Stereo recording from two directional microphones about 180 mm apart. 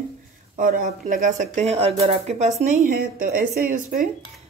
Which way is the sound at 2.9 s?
55° right (ahead or behind).